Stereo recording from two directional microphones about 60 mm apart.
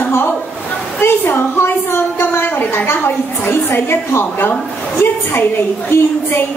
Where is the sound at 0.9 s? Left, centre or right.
Left.